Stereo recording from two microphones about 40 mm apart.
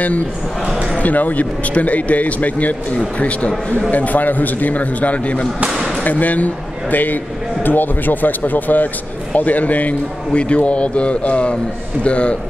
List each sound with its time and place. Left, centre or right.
0.9 s speech: left
10.3 s speech: left